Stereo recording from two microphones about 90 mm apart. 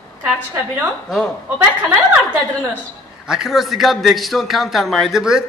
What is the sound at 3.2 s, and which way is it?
A man's voice, 5° right (ahead or behind).